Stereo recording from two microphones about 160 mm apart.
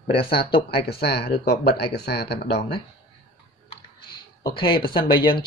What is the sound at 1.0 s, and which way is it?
Speech, 90° left.